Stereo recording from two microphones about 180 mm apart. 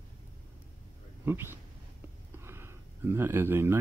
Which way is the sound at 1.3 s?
15° right (ahead or behind).